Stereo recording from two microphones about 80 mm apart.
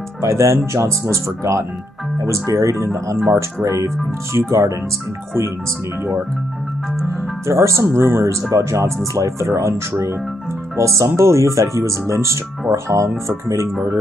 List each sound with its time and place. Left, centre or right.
0.2 s speech: right
7.4 s speech: right